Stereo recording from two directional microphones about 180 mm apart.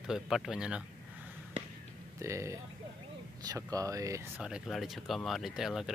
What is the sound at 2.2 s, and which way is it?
Speech, 15° right (ahead or behind).